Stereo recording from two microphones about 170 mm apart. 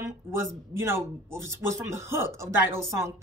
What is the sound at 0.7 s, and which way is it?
Speech, 15° right (ahead or behind).